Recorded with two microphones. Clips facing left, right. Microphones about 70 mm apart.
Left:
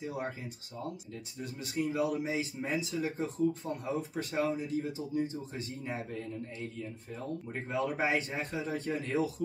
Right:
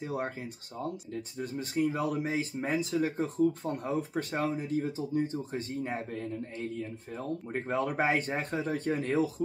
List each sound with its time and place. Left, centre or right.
0.0 s speech: right